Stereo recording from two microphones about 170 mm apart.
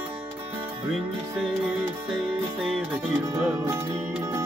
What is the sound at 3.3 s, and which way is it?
Music, 15° right (ahead or behind).